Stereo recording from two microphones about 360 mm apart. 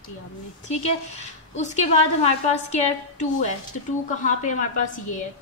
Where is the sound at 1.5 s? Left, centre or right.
Centre.